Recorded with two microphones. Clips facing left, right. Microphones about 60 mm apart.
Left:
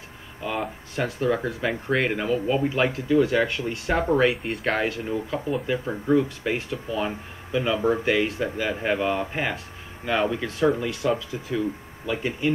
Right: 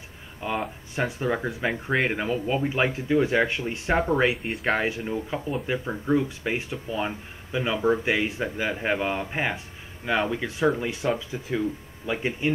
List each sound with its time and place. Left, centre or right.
0.4 s speech: centre
2.7 s speech: right
4.1 s speech: centre
4.6 s speech: centre
10.8 s speech: right